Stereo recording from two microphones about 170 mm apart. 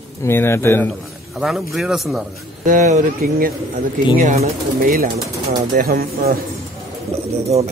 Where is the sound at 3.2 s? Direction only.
60° right (ahead or behind).